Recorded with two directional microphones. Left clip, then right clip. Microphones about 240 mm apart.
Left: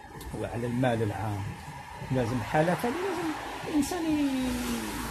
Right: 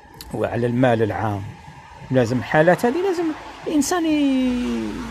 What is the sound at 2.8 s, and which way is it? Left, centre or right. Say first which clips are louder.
Speech: right 11 dB; centre.